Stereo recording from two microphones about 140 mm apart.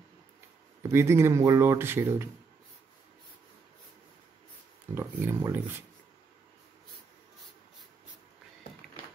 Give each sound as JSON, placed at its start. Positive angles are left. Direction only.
{"t": 0.9, "sound": "speech", "side_deg": -20}
{"t": 4.9, "sound": "speech", "side_deg": -20}